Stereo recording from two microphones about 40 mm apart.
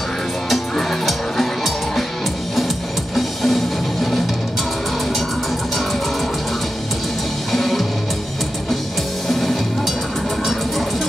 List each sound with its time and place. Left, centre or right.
0.5 s music: centre
3.2 s music: centre
7.5 s music: centre
9.3 s music: centre